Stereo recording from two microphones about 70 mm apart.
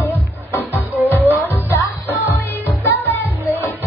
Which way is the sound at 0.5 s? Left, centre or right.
Left.